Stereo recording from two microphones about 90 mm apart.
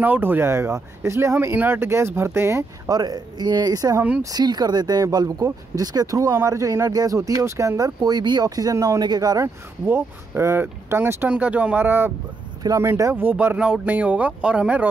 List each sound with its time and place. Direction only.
0.0 s speech: 20° right (ahead or behind)
2.9 s speech: 45° right (ahead or behind)
9.8 s speech: 25° right (ahead or behind)